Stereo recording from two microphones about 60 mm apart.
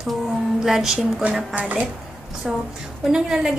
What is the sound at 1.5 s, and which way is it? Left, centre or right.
Speech, right.